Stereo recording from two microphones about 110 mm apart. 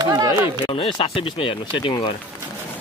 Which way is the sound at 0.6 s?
55° left (ahead or behind).